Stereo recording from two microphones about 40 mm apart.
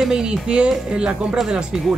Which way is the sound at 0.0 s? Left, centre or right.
Centre.